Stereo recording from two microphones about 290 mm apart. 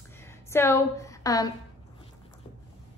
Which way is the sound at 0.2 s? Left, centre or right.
Centre.